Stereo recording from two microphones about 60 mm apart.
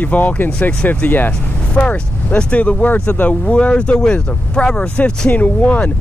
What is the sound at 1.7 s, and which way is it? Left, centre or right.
Speech, centre.